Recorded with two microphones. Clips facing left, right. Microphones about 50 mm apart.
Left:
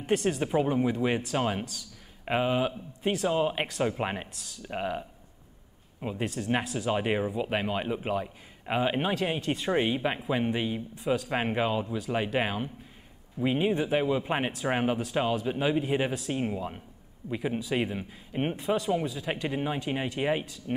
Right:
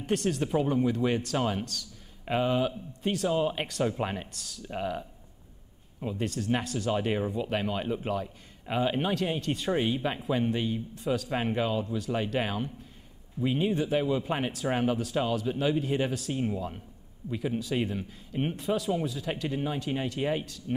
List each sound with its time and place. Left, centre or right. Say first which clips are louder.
0.0 s speech: left 1 dB; centre
3.0 s speech: left 1 dB; centre
3.3 s speech: even; centre
4.3 s speech: right 1 dB; centre
4.6 s speech: left 1 dB; centre
9.7 s speech: left 1 dB; left
18.6 s speech: left 1 dB; centre